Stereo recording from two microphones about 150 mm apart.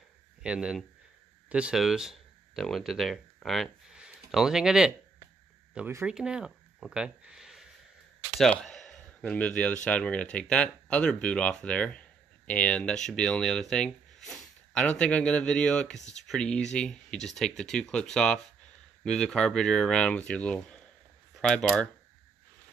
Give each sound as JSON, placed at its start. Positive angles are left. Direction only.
{"t": 0.4, "sound": "speech", "side_deg": -5}
{"t": 6.0, "sound": "speech", "side_deg": -5}
{"t": 8.4, "sound": "a sound", "side_deg": 5}
{"t": 9.8, "sound": "speech", "side_deg": 10}
{"t": 16.0, "sound": "speech", "side_deg": 50}
{"t": 16.3, "sound": "speech", "side_deg": 5}